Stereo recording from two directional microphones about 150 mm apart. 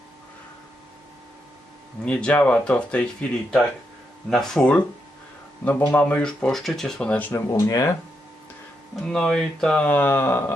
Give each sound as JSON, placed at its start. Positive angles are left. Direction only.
{"t": 2.0, "sound": "speech", "side_deg": 5}
{"t": 7.5, "sound": "speech", "side_deg": 20}
{"t": 8.9, "sound": "speech", "side_deg": 5}